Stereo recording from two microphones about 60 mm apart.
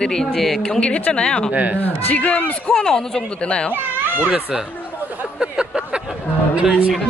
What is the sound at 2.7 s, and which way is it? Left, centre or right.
Speech, centre.